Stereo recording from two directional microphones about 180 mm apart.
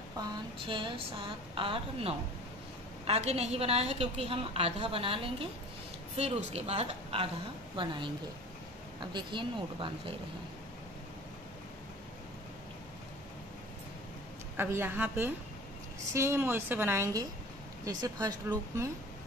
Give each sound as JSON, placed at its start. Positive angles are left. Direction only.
{"t": 0.7, "sound": "a woman's voice", "side_deg": -30}
{"t": 9.1, "sound": "a woman's voice", "side_deg": -25}
{"t": 14.6, "sound": "a woman's voice", "side_deg": -10}